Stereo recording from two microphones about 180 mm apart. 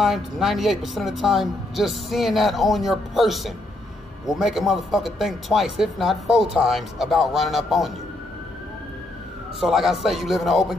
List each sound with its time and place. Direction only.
0.0 s speech: centre (ahead or behind)
9.6 s speech: centre (ahead or behind)